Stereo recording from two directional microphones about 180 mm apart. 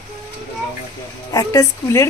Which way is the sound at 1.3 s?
20° left (ahead or behind).